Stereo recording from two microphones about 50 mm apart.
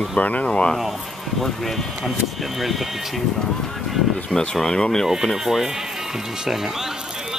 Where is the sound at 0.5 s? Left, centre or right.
Centre.